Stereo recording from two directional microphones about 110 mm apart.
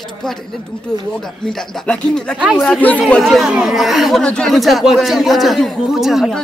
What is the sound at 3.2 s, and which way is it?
Speech, centre (ahead or behind).